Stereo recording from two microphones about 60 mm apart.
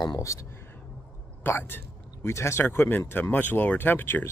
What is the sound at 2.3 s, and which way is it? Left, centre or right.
Speech, left.